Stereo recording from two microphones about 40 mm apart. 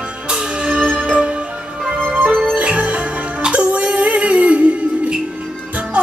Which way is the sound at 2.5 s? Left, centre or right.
Right.